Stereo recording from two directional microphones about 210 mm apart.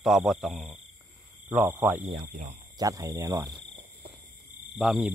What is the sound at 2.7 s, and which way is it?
Cricket, 15° right (ahead or behind).